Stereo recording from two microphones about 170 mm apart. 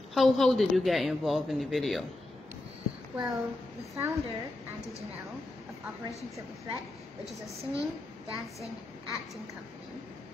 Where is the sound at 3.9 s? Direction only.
15° right (ahead or behind).